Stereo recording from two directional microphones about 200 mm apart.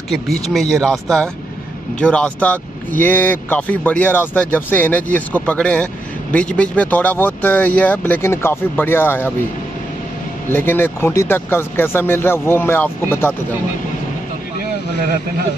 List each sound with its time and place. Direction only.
0.1 s speech: centre (ahead or behind)
10.5 s speech: 10° left (ahead or behind)